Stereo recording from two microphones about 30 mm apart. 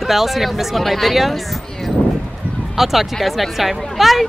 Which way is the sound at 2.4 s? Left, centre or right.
Right.